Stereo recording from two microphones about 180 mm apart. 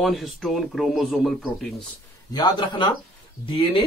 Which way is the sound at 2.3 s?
20° left (ahead or behind).